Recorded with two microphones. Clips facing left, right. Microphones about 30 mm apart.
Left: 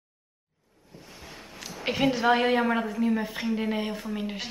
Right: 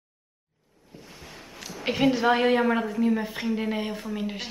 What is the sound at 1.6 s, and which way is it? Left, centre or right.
A woman's voice, centre.